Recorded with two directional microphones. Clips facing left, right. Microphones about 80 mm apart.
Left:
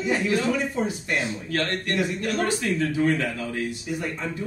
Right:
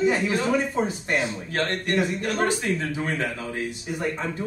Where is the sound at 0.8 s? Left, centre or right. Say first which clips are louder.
Right 1 dB; right.